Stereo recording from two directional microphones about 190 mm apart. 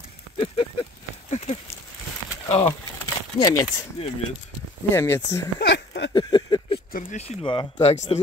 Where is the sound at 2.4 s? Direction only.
30° left (ahead or behind).